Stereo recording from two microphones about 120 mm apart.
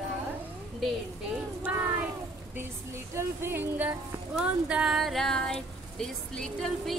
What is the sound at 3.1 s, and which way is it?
Speech, 20° right (ahead or behind).